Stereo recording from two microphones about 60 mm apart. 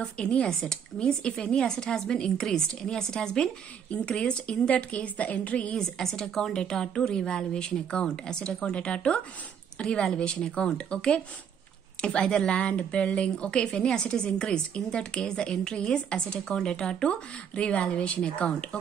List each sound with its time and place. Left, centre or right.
0.0 s a woman's voice: centre
5.8 s a woman's voice: centre